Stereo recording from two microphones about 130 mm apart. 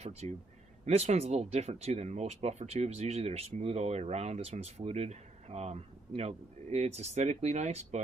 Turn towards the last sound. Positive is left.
turn(degrees=-65)  # may be behind; listen again after turning